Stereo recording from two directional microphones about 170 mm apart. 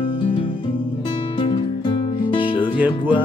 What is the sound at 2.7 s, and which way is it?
Music, 10° right (ahead or behind).